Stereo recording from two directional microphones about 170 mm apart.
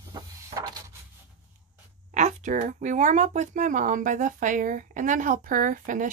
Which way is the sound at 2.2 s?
45° right (ahead or behind).